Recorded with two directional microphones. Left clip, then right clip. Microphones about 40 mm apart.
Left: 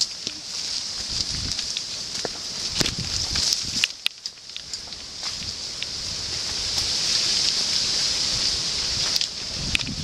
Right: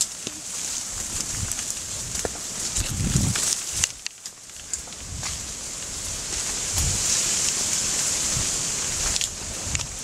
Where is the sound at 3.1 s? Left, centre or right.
Centre.